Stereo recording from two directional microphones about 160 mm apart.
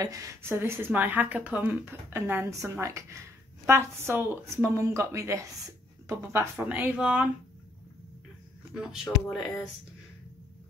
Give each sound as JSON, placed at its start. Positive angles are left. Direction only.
{"t": 0.0, "sound": "speech", "side_deg": -20}
{"t": 9.3, "sound": "speech", "side_deg": 0}